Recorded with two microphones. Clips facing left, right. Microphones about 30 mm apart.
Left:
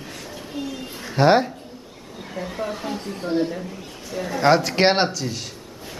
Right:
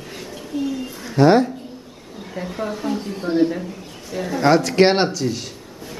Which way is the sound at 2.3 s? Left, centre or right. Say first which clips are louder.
Right 2 dB; centre.